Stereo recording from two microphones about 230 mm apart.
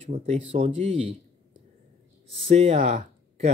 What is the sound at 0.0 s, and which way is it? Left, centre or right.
Speech, right.